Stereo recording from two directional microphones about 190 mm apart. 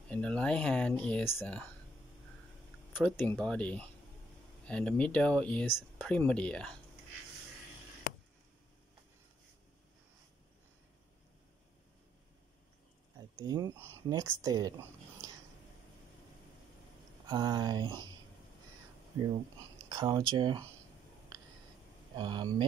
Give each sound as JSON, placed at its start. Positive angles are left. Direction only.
{"t": 0.1, "sound": "speech", "side_deg": 5}
{"t": 2.9, "sound": "speech", "side_deg": 5}
{"t": 13.4, "sound": "speech", "side_deg": -20}
{"t": 17.3, "sound": "speech", "side_deg": -20}
{"t": 19.9, "sound": "speech", "side_deg": -20}
{"t": 22.1, "sound": "speech", "side_deg": -25}